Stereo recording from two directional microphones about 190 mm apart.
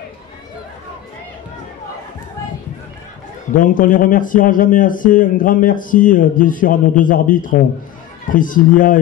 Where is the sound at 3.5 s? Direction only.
45° left (ahead or behind).